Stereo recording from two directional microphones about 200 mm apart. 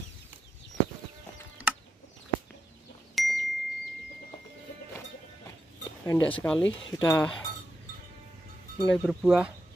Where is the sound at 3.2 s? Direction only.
Centre (ahead or behind).